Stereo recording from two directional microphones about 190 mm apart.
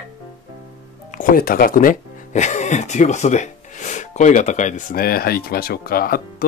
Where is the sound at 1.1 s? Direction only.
45° left (ahead or behind).